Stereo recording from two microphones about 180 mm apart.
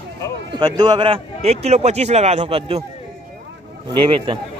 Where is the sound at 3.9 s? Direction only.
25° right (ahead or behind).